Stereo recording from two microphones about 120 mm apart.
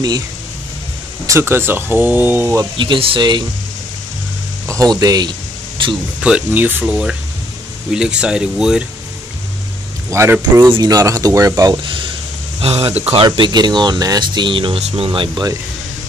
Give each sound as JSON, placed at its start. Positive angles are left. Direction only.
{"t": 1.2, "sound": "speech", "side_deg": -25}
{"t": 2.8, "sound": "speech", "side_deg": -45}
{"t": 4.6, "sound": "speech", "side_deg": -30}
{"t": 6.2, "sound": "speech", "side_deg": -10}
{"t": 10.1, "sound": "speech", "side_deg": -20}
{"t": 10.7, "sound": "speech", "side_deg": -30}
{"t": 12.5, "sound": "speech", "side_deg": -55}
{"t": 13.2, "sound": "speech", "side_deg": -40}